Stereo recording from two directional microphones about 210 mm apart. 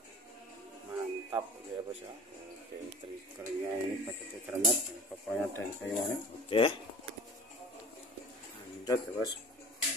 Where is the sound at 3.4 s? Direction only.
10° right (ahead or behind).